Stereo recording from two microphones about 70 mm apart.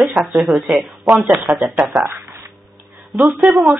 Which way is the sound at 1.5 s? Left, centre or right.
Right.